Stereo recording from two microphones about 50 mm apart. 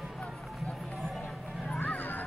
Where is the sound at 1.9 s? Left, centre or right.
Left.